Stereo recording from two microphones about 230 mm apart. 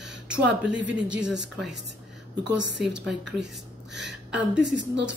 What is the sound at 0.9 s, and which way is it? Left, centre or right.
Speech, centre.